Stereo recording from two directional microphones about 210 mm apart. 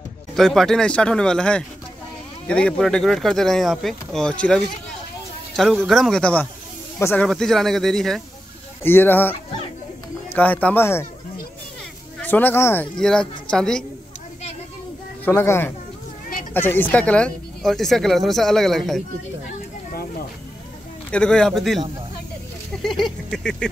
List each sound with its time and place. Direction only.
0.3 s speech: centre (ahead or behind)
5.9 s speech: centre (ahead or behind)
7.2 s speech: centre (ahead or behind)
10.3 s speech: 10° left (ahead or behind)
12.2 s speech: 10° left (ahead or behind)
15.2 s speech: 10° left (ahead or behind)
19.9 s snake: 45° left (ahead or behind)
21.1 s speech: 5° left (ahead or behind)
22.7 s a sound: centre (ahead or behind)